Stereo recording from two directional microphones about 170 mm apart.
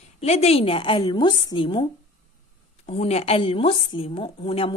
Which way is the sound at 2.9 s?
35° left (ahead or behind).